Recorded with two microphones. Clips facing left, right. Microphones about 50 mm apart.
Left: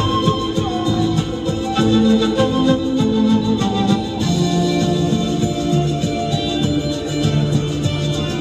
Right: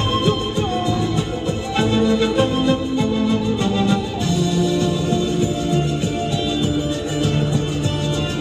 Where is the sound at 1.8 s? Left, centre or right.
Right.